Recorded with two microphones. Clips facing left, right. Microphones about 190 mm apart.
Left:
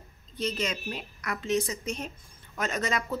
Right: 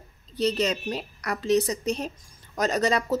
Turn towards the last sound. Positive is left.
turn(degrees=-35)  # may be behind; listen again after turning